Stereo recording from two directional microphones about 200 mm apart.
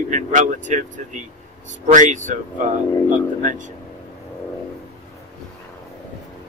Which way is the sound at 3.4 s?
40° right (ahead or behind).